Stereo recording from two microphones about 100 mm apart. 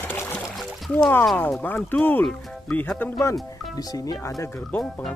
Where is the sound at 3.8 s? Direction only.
40° left (ahead or behind).